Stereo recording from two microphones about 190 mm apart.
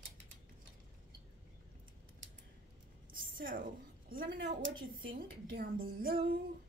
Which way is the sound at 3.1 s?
45° right (ahead or behind).